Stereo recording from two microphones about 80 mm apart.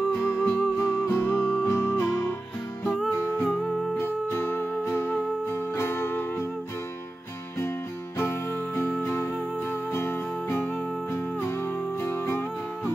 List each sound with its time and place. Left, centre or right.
0.1 s music: left
0.4 s music: centre
0.7 s music: left
1.2 s music: left
2.8 s music: centre
4.0 s music: left
8.2 s music: left